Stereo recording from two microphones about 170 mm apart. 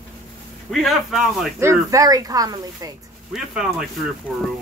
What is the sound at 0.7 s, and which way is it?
Speech, centre (ahead or behind).